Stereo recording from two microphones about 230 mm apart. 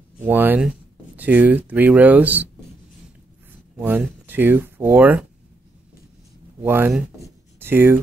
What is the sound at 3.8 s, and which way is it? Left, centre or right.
Speech, centre.